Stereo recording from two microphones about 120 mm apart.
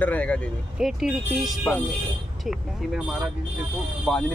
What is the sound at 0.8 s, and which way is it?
Speech, 5° right (ahead or behind).